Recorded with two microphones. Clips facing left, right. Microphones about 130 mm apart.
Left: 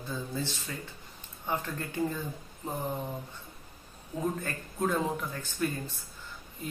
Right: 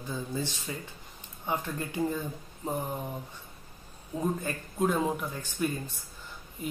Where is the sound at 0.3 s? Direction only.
15° right (ahead or behind).